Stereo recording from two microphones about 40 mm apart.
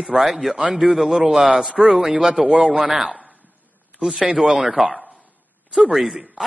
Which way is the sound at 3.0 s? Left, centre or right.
Right.